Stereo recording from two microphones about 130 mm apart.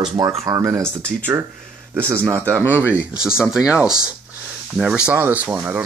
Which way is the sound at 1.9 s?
20° right (ahead or behind).